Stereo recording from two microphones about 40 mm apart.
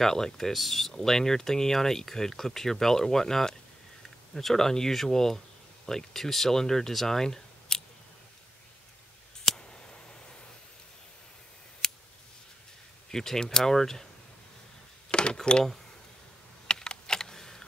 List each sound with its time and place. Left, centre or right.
0.0 s speech: centre
9.4 s scissors: centre
11.8 s scissors: centre
13.1 s speech: centre
15.0 s cash register: left
16.6 s computer keyboard: left